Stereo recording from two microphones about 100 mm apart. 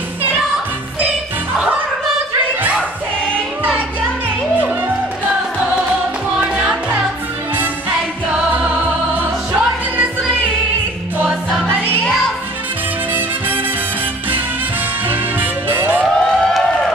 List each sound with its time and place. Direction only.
1.0 s music: 15° right (ahead or behind)
6.4 s music: 10° right (ahead or behind)
8.3 s music: 15° right (ahead or behind)
15.0 s music: 20° right (ahead or behind)
16.0 s a sound: 5° left (ahead or behind)